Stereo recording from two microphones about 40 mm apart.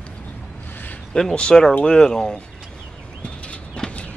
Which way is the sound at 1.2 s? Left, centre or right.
Centre.